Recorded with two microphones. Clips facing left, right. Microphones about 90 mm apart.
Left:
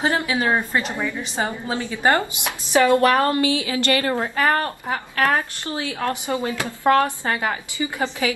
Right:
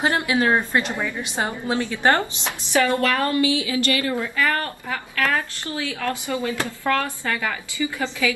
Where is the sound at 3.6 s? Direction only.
40° left (ahead or behind).